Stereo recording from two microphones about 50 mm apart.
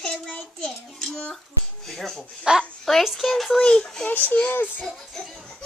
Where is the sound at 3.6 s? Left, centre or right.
Centre.